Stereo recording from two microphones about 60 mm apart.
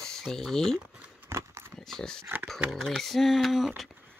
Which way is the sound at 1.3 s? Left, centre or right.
Right.